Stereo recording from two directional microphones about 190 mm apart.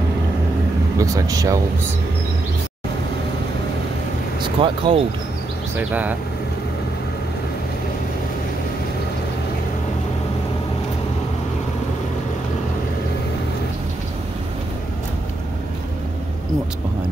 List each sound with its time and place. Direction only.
0.9 s speech: 15° right (ahead or behind)
4.4 s speech: 30° right (ahead or behind)
5.8 s speech: 10° right (ahead or behind)